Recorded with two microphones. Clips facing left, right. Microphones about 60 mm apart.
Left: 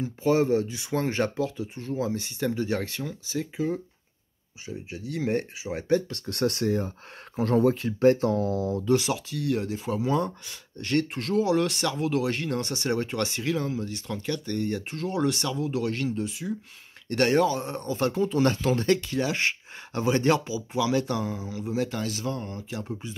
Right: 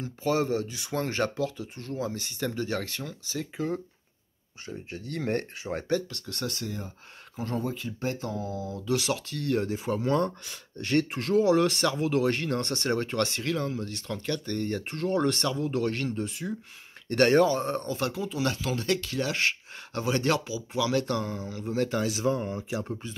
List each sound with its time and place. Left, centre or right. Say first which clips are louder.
0.0 s speech: left 4 dB; left
6.3 s speech: left 10 dB; left
9.1 s speech: left 1 dB; centre
17.8 s speech: left 4 dB; left
18.2 s speech: left 6 dB; left
19.0 s speech: left 2 dB; centre
21.8 s speech: right 4 dB; centre